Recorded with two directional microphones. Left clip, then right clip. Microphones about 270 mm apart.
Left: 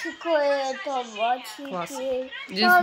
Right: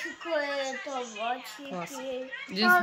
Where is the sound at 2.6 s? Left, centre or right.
Centre.